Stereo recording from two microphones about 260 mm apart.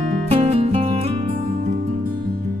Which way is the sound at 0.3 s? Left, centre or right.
Right.